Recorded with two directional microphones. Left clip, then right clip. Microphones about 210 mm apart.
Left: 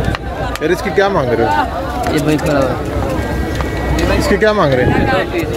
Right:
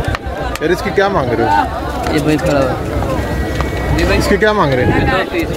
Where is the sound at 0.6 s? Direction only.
Centre (ahead or behind).